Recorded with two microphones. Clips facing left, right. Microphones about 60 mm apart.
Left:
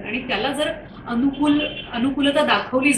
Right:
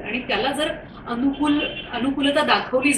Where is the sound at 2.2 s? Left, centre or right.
Centre.